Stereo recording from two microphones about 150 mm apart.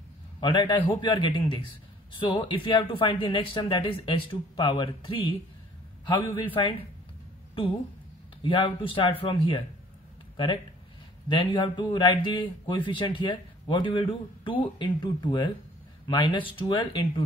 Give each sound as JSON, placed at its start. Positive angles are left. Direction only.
{"t": 0.4, "sound": "a man's voice", "side_deg": 30}
{"t": 8.4, "sound": "a man's voice", "side_deg": 35}